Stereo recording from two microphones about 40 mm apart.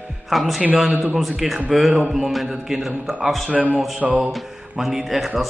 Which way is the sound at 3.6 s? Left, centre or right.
Centre.